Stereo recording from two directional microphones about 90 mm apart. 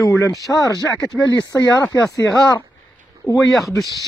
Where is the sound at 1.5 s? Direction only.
40° left (ahead or behind).